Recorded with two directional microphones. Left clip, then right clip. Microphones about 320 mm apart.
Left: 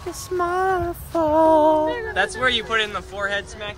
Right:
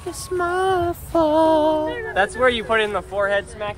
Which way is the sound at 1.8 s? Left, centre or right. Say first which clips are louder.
Left 2 dB; left.